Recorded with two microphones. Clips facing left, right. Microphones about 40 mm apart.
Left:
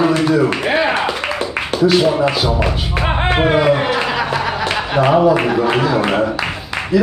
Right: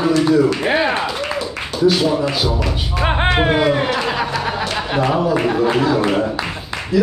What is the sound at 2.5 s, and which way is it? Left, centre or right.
Music, left.